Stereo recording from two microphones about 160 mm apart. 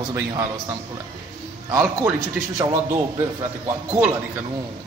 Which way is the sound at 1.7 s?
15° right (ahead or behind).